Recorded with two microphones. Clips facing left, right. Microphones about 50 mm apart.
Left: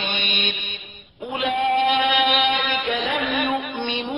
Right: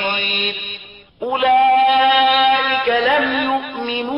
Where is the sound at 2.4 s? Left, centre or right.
Right.